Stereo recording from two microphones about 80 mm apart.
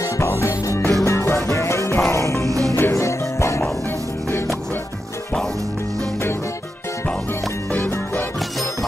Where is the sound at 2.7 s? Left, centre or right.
Left.